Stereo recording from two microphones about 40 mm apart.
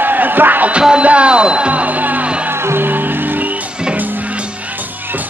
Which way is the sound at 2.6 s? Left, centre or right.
Right.